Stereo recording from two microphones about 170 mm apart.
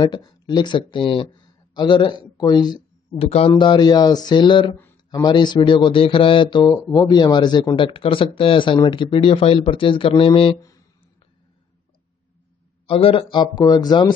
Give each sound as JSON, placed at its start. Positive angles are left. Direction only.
{"t": 0.0, "sound": "speech", "side_deg": 25}
{"t": 12.8, "sound": "speech", "side_deg": 30}